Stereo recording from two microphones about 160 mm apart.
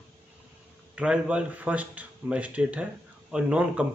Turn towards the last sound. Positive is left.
turn(degrees=-5)  # may be behind; listen again after turning